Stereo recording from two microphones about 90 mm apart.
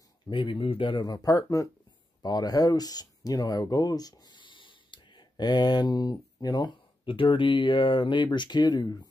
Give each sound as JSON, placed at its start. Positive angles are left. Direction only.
{"t": 0.3, "sound": "speech", "side_deg": 70}
{"t": 1.0, "sound": "speech", "side_deg": 45}
{"t": 7.1, "sound": "speech", "side_deg": 70}